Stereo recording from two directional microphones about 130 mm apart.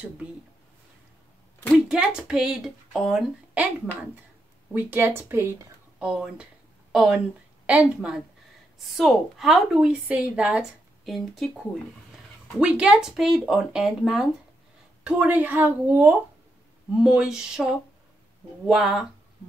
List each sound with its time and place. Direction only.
1.9 s a woman's voice: 5° right (ahead or behind)
5.9 s a woman's voice: 5° right (ahead or behind)
18.7 s a woman's voice: 5° right (ahead or behind)